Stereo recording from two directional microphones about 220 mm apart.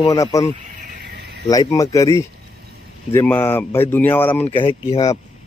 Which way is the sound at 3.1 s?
10° left (ahead or behind).